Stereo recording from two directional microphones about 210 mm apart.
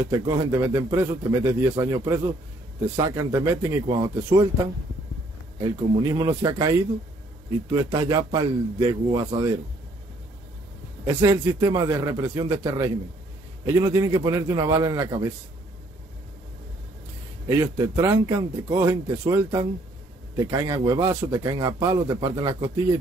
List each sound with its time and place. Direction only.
0.0 s speech: 15° right (ahead or behind)
5.6 s speech: 20° right (ahead or behind)
7.7 s speech: 20° right (ahead or behind)
11.1 s speech: 15° right (ahead or behind)
17.5 s speech: 15° right (ahead or behind)